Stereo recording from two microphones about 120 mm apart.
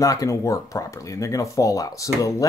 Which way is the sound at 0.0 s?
30° left (ahead or behind).